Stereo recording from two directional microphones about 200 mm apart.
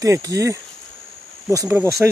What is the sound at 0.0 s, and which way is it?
Speech, 15° right (ahead or behind).